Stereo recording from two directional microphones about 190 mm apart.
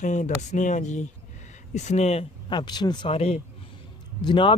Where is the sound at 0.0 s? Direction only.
40° left (ahead or behind).